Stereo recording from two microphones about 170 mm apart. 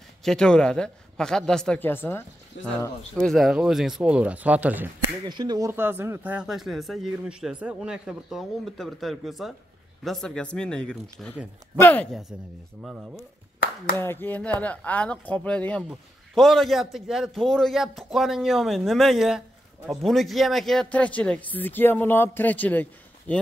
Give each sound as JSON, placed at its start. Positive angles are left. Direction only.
{"t": 0.2, "sound": "a man's voice", "side_deg": 5}
{"t": 5.2, "sound": "speech", "side_deg": -25}
{"t": 5.7, "sound": "a man's voice", "side_deg": -15}
{"t": 13.9, "sound": "a man's voice", "side_deg": 10}